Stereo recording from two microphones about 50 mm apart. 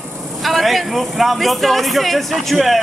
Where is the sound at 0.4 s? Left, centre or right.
Centre.